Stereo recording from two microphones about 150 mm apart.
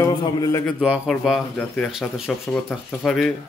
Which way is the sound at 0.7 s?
10° right (ahead or behind).